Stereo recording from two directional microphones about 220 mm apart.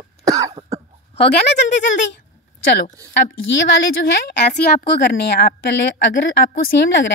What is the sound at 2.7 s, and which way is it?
Speech, 45° left (ahead or behind).